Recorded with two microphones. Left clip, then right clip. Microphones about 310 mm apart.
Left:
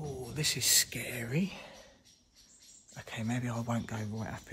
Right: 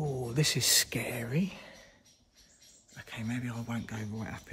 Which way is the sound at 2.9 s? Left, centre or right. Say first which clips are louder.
Left 1 dB; centre.